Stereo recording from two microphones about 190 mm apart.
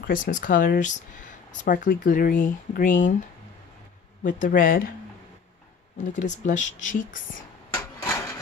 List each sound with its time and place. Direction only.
0.0 s speech: 45° left (ahead or behind)
4.2 s speech: 40° left (ahead or behind)
5.9 s speech: 40° left (ahead or behind)
8.0 s a sound: 15° left (ahead or behind)